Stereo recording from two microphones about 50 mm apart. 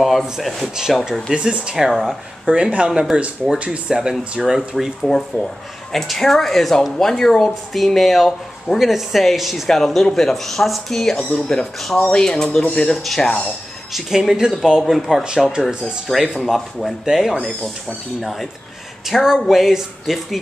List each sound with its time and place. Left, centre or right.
0.0 s speech: centre
1.3 s speech: centre
1.9 s speech: centre
2.4 s speech: right
3.9 s speech: centre
5.0 s speech: centre
13.0 s speech: centre
15.2 s speech: centre
15.6 s speech: centre
19.0 s speech: centre